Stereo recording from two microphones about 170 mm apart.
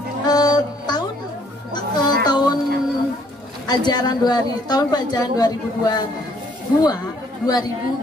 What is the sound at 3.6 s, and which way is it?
A woman's voice, 25° left (ahead or behind).